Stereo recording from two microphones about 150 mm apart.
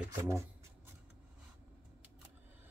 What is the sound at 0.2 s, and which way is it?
Speech, 20° right (ahead or behind).